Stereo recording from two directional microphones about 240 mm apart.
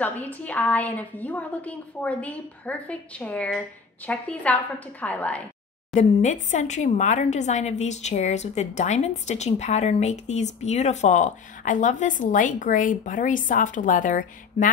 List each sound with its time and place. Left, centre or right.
0.0 s a woman's voice: centre
5.9 s speech: left